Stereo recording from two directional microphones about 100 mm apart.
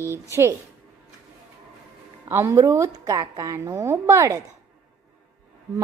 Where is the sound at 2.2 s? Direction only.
25° right (ahead or behind).